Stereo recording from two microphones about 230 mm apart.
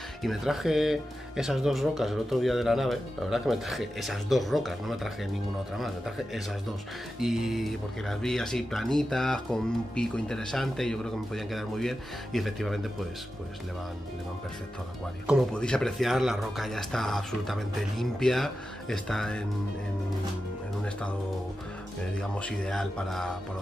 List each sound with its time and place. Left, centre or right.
0.2 s speech: centre
15.2 s speech: centre
22.2 s speech: centre